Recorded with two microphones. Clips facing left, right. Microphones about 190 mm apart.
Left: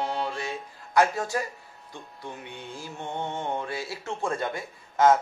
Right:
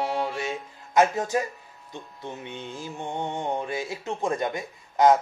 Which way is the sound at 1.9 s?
20° right (ahead or behind).